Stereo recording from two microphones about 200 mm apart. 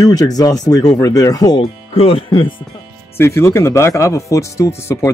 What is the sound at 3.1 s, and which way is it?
Speech, 15° left (ahead or behind).